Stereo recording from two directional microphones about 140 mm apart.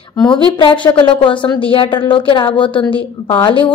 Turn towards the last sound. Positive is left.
turn(degrees=35)  # may be behind; listen again after turning